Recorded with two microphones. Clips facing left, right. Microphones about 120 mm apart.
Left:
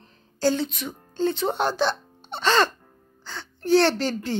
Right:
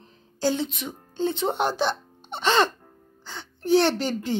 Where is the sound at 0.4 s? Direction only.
20° right (ahead or behind).